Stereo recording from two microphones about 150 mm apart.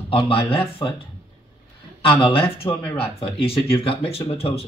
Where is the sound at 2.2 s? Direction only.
40° left (ahead or behind).